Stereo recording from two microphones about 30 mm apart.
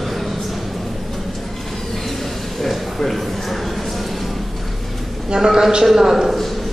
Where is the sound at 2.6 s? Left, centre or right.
Centre.